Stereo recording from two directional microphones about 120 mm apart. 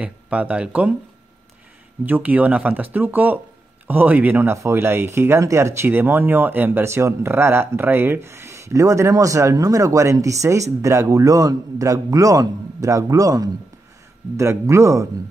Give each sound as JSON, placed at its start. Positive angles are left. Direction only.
{"t": 0.0, "sound": "speech", "side_deg": -10}
{"t": 2.0, "sound": "speech", "side_deg": -15}